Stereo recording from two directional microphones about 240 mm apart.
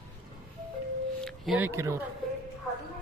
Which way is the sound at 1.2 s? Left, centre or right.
Centre.